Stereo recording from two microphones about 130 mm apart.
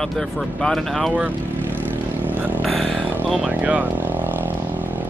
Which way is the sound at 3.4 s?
10° right (ahead or behind).